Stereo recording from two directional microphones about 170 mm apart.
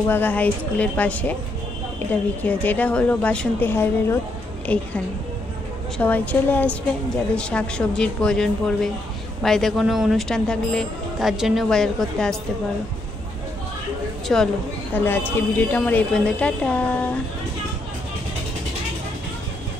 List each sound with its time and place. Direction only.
0.0 s speech: 10° left (ahead or behind)
2.4 s speech: 10° left (ahead or behind)
5.9 s speech: 10° left (ahead or behind)
14.2 s speech: 5° left (ahead or behind)